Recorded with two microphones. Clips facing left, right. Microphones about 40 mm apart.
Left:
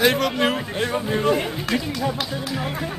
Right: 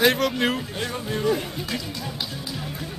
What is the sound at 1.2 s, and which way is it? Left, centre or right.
Speech, left.